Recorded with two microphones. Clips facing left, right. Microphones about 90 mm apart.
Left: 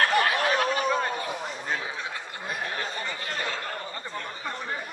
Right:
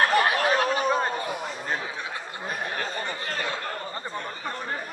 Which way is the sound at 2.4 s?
40° right (ahead or behind).